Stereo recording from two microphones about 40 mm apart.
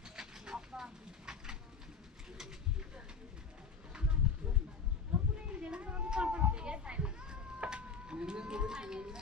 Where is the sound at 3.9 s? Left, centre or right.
Right.